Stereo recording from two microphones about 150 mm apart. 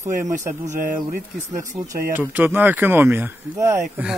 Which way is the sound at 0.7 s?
65° right (ahead or behind).